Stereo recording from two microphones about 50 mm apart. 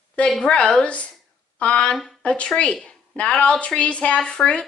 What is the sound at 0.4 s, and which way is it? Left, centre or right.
A woman's voice, centre.